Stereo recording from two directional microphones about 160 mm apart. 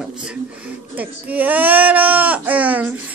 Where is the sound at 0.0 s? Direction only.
5° right (ahead or behind).